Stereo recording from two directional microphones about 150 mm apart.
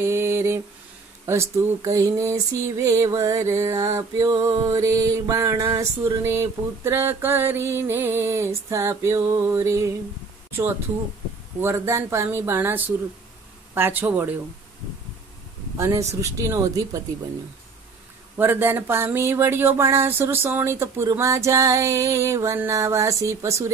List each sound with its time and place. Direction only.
0.0 s a sound: 15° right (ahead or behind)
1.2 s music: 20° right (ahead or behind)
11.6 s speech: 15° right (ahead or behind)
15.8 s music: 20° right (ahead or behind)
18.4 s music: 15° right (ahead or behind)